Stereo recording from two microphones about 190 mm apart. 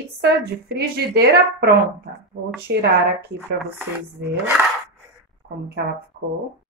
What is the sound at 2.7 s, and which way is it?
Speech, 60° right (ahead or behind).